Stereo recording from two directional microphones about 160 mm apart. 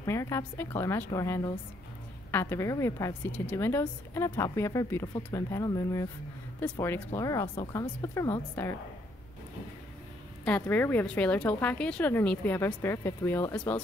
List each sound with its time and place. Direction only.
0.0 s speech: 15° left (ahead or behind)
10.4 s speech: 10° left (ahead or behind)